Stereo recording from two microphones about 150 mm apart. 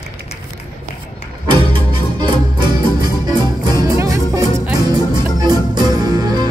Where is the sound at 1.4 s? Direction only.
30° right (ahead or behind).